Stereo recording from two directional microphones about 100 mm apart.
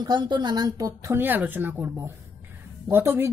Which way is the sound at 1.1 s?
20° right (ahead or behind).